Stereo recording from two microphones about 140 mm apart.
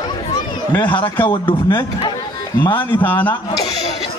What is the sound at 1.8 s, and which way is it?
Speech, 25° left (ahead or behind).